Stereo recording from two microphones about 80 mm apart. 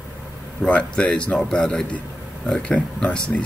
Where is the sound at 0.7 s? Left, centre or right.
Centre.